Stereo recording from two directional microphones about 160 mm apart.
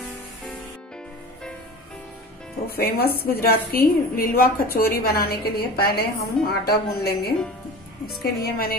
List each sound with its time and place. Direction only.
2.7 s a woman's voice: 70° left (ahead or behind)